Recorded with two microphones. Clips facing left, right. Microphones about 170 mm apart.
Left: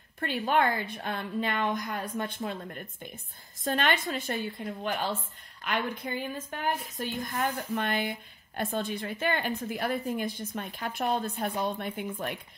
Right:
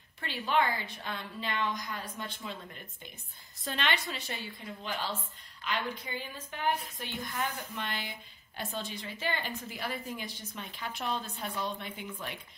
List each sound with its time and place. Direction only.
0.2 s a woman's voice: 55° left (ahead or behind)